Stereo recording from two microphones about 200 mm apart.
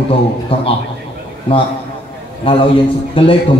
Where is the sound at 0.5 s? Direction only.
30° left (ahead or behind).